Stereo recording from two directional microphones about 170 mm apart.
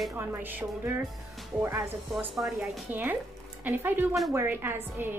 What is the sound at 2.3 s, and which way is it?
A woman's voice, centre (ahead or behind).